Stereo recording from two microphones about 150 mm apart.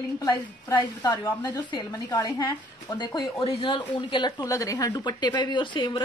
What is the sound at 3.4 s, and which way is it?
Speech, 40° left (ahead or behind).